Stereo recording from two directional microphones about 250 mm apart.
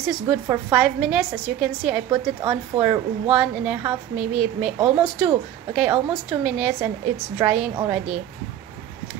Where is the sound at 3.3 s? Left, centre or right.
Centre.